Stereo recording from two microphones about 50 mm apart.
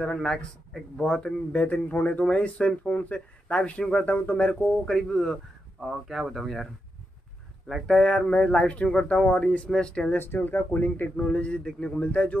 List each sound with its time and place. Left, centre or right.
0.0 s speech: centre
1.1 s speech: left
2.2 s speech: left
2.8 s speech: left
4.8 s speech: centre
5.8 s speech: centre
7.8 s speech: centre
8.3 s speech: left
10.1 s speech: left
11.2 s speech: left
12.0 s speech: left